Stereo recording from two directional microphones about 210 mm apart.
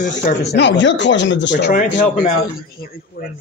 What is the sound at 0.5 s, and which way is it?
Speech, 55° left (ahead or behind).